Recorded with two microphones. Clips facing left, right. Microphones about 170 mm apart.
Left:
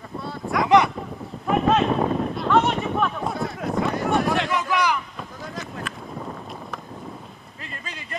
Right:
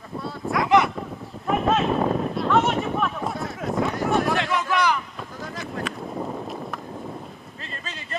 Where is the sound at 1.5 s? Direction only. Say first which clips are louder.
Left 2 dB; centre (ahead or behind).